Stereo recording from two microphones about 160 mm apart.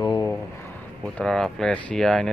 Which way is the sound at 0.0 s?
25° left (ahead or behind).